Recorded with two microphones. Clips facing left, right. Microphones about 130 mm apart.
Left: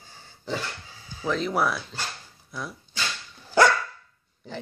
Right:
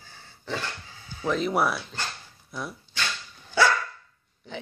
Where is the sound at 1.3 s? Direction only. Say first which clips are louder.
Right 1 dB; 5° right (ahead or behind).